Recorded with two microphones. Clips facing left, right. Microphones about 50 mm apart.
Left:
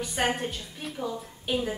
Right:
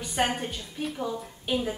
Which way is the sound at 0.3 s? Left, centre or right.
Centre.